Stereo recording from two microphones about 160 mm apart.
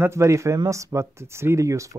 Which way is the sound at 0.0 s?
15° right (ahead or behind).